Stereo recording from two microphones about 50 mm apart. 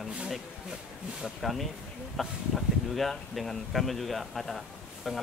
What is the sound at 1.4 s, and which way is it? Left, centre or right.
Speech, centre.